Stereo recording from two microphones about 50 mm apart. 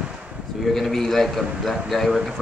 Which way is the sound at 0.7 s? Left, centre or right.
Centre.